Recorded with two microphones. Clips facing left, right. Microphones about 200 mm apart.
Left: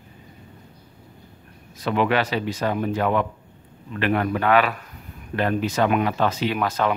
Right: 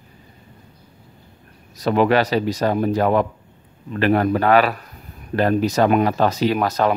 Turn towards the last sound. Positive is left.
turn(degrees=-40)  # may be behind; listen again after turning